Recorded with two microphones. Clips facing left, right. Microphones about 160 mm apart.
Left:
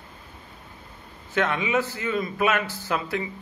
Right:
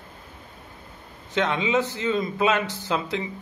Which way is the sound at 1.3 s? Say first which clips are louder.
Right 1 dB; 20° right (ahead or behind).